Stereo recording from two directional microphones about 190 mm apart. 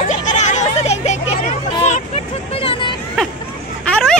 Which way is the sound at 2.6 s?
30° left (ahead or behind).